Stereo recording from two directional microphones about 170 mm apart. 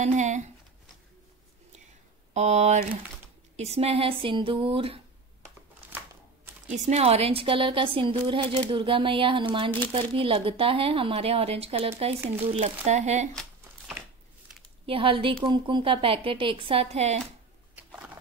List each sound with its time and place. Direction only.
0.0 s speech: 45° right (ahead or behind)
2.3 s speech: 40° right (ahead or behind)
5.9 s a sound: 10° right (ahead or behind)
6.7 s speech: 40° right (ahead or behind)
13.3 s a sound: 5° left (ahead or behind)
14.9 s speech: 30° right (ahead or behind)